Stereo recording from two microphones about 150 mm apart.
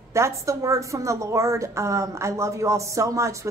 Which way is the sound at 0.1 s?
20° right (ahead or behind).